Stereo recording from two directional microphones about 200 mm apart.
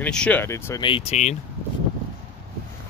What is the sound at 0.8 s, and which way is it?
Speech, 30° left (ahead or behind).